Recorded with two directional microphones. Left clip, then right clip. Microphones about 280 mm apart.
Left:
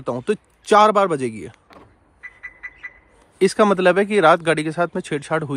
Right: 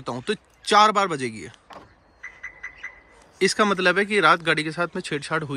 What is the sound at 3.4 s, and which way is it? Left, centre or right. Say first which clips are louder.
Speech: left 4 dB; centre.